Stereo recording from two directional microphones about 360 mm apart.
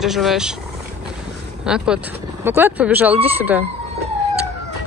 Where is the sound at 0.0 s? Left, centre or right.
Centre.